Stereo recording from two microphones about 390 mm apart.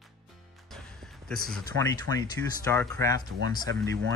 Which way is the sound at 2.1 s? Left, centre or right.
Right.